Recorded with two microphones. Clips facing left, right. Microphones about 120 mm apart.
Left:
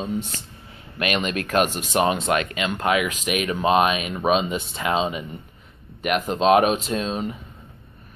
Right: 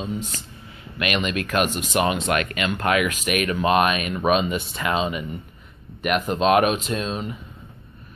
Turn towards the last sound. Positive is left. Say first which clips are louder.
# left 1 dB
turn(degrees=35)  # may be behind; listen again after turning